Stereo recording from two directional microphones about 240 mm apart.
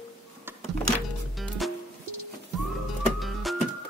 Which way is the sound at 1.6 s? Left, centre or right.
Centre.